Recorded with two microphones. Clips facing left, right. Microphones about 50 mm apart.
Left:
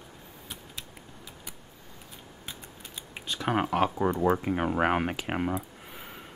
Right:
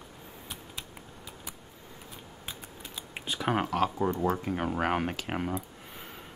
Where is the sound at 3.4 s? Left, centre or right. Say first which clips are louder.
Left 1 dB; centre.